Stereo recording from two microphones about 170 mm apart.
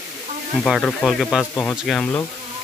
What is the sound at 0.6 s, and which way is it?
Speech, 5° left (ahead or behind).